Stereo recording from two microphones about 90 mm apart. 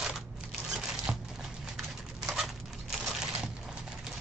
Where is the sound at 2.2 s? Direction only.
5° right (ahead or behind).